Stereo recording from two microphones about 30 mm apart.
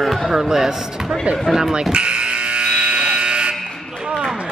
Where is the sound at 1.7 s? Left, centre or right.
Right.